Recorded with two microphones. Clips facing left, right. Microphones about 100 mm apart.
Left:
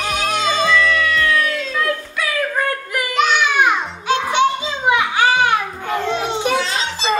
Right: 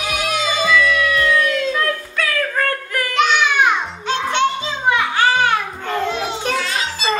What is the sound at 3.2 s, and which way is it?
Music, 5° left (ahead or behind).